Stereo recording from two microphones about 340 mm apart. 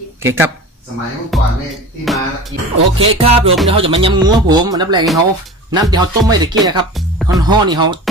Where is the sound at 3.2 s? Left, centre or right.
Centre.